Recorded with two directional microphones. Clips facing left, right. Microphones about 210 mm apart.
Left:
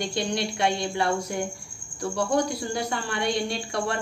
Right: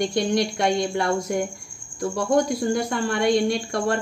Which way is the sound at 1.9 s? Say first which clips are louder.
Right 4 dB; 50° right (ahead or behind).